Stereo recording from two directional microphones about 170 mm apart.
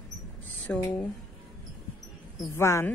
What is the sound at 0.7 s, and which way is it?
Speech, 5° left (ahead or behind).